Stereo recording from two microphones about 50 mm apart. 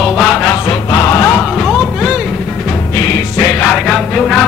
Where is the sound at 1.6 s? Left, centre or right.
Centre.